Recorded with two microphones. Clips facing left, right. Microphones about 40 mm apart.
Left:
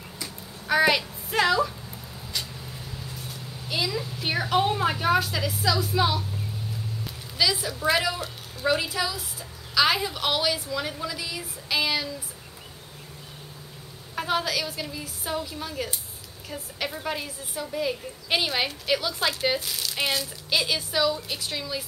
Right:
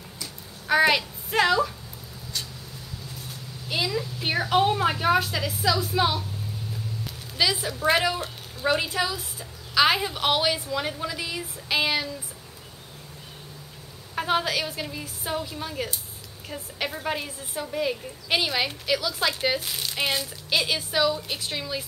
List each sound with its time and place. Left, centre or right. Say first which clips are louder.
0.7 s a child's voice: right 1 dB; centre
3.6 s a woman's voice: right 1 dB; centre
7.6 s a woman's voice: right 2 dB; centre
14.1 s a woman's voice: right 2 dB; centre
18.3 s speech: right 1 dB; centre
18.9 s speech: left 1 dB; centre
19.1 s speech: even; centre
19.6 s a woman's voice: even; centre